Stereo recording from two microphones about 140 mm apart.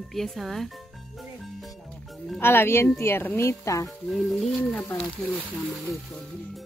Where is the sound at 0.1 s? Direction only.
Centre (ahead or behind).